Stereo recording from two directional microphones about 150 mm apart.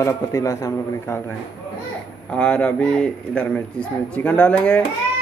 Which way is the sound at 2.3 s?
10° left (ahead or behind).